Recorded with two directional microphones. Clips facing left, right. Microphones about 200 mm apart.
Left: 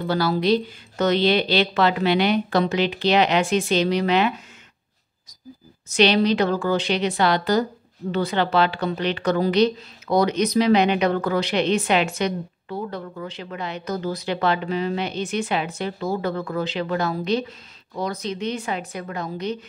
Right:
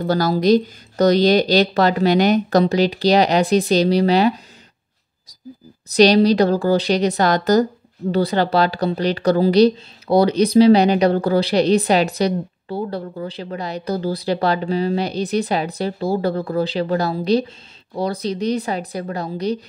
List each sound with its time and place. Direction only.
0.0 s speech: 40° right (ahead or behind)
5.9 s speech: 35° right (ahead or behind)